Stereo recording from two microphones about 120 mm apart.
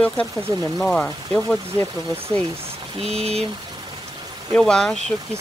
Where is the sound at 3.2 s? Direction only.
60° right (ahead or behind).